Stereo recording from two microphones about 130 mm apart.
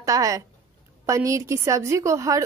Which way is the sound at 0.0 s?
25° right (ahead or behind).